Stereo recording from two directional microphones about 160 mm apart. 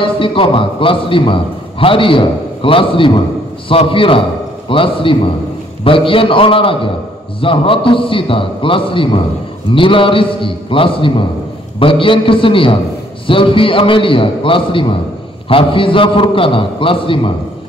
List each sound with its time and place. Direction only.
0.0 s a man's voice: 35° left (ahead or behind)